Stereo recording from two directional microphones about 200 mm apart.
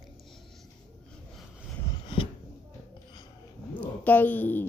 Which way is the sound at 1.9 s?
25° left (ahead or behind).